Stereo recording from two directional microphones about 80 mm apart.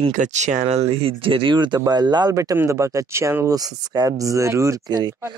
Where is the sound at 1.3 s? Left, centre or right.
Right.